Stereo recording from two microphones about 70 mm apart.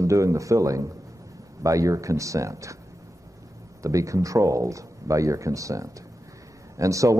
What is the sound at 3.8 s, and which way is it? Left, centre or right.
Speech, right.